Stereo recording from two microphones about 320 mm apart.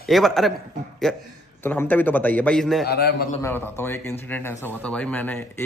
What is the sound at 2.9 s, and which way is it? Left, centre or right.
Speech, left.